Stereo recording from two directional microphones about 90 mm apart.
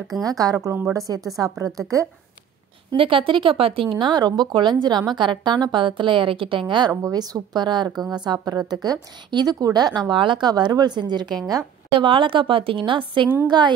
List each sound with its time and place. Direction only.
0.2 s speech: 40° right (ahead or behind)
3.0 s speech: 80° right
4.0 s a woman's voice: 50° right (ahead or behind)
6.9 s speech: 40° right (ahead or behind)
12.0 s speech: 70° right (ahead or behind)
13.5 s a woman's voice: 55° right (ahead or behind)